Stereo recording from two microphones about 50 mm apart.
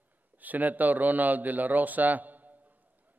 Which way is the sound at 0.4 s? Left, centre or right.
Right.